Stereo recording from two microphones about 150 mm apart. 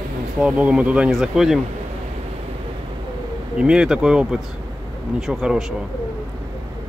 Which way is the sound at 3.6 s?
5° right (ahead or behind).